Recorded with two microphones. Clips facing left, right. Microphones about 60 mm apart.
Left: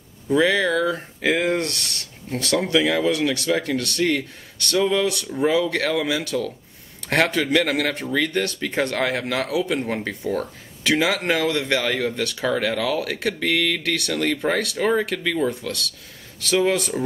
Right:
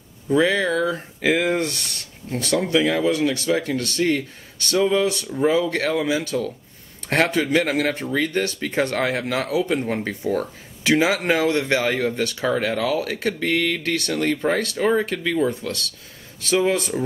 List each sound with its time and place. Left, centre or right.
0.3 s speech: centre
8.1 s speech: centre
11.7 s speech: centre
12.0 s speech: centre